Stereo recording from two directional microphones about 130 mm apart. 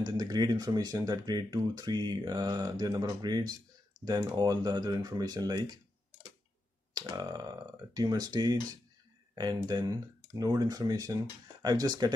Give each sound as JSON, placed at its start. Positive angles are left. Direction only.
{"t": 0.0, "sound": "speech", "side_deg": -30}
{"t": 6.9, "sound": "speech", "side_deg": -30}